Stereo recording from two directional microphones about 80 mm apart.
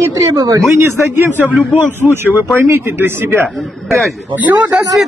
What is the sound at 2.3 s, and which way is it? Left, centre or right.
Speech, right.